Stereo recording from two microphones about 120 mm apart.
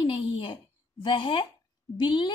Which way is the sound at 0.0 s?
45° left (ahead or behind).